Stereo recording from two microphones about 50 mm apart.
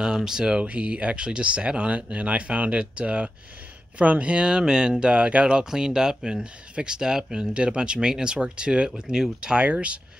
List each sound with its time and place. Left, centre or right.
0.0 s speech: centre